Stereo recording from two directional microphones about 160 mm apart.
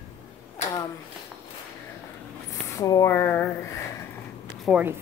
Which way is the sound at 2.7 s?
20° left (ahead or behind).